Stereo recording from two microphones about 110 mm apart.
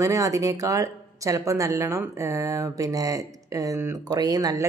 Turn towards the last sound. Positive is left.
turn(degrees=-35)  # may be behind; listen again after turning